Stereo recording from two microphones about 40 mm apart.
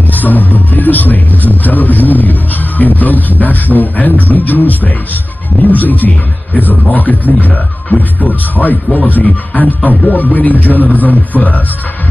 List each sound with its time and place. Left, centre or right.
0.1 s speech: left